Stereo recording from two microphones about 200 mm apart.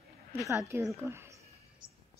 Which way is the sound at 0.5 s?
10° right (ahead or behind).